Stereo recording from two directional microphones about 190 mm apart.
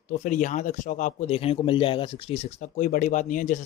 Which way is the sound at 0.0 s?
40° left (ahead or behind).